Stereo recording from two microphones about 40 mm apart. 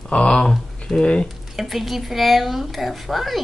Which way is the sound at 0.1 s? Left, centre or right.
Left.